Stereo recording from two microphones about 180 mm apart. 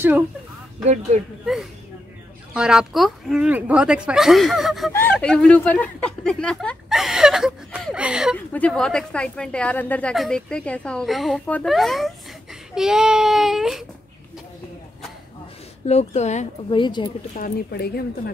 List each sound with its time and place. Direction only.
1.1 s speech: 40° right (ahead or behind)
2.5 s a woman's voice: 5° right (ahead or behind)
4.9 s a woman's voice: 10° left (ahead or behind)
15.9 s speech: 35° left (ahead or behind)
16.7 s speech: 25° left (ahead or behind)
17.4 s speech: 60° left (ahead or behind)